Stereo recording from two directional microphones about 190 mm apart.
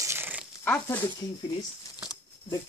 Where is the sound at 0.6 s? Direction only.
10° left (ahead or behind).